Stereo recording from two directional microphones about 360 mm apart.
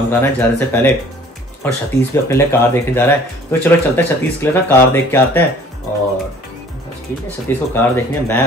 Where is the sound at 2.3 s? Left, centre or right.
Centre.